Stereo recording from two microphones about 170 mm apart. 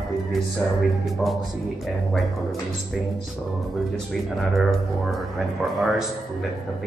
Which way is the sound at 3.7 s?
Centre (ahead or behind).